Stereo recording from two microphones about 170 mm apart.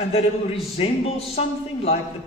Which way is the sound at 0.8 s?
35° left (ahead or behind).